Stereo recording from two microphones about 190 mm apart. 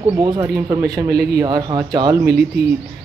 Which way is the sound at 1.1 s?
55° right (ahead or behind).